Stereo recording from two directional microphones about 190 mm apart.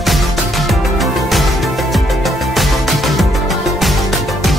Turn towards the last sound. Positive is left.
turn(degrees=0)  # may be behind; listen again after turning